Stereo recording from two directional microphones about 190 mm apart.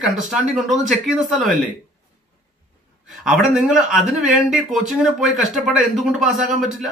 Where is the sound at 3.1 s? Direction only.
Centre (ahead or behind).